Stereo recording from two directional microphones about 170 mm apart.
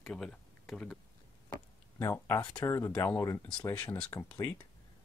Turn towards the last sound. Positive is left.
turn(degrees=15)  # may be behind; listen again after turning